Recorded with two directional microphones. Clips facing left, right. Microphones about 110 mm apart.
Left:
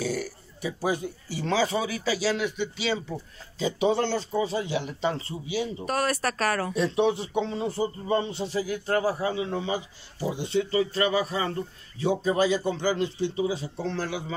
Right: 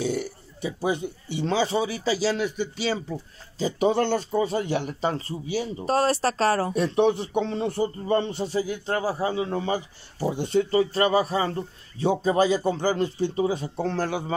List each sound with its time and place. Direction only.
0.0 s speech: 25° right (ahead or behind); by 5.9 s 40° right (ahead or behind)
5.9 s speech: 30° right (ahead or behind)
6.7 s speech: 50° right (ahead or behind)
8.5 s speech: 25° right (ahead or behind); by 14.3 s 45° right (ahead or behind)